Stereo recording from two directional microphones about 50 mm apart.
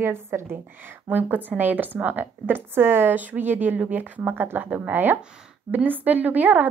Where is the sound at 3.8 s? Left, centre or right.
Right.